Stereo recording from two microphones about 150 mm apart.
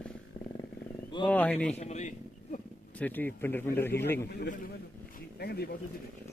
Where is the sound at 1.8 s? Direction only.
50° left (ahead or behind).